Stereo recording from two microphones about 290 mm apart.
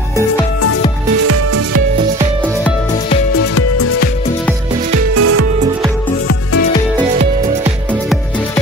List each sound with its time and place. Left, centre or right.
1.2 s music: right
3.5 s music: left
5.1 s music: right